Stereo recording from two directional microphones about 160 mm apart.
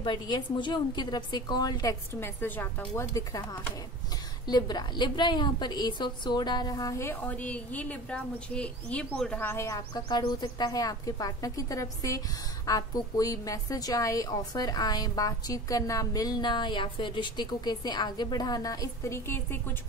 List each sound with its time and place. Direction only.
0.0 s a woman's voice: 30° left (ahead or behind); by 3.0 s 10° left (ahead or behind)
4.5 s a woman's voice: 25° left (ahead or behind)